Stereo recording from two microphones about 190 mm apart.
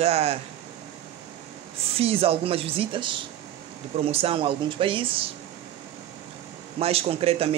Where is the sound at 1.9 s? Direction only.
30° right (ahead or behind).